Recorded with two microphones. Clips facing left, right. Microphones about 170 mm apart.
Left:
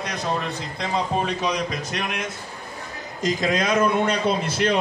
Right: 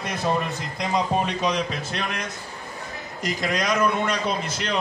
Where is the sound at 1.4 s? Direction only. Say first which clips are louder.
Even; 10° left (ahead or behind).